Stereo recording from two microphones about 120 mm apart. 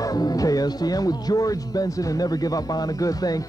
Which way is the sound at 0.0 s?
30° left (ahead or behind).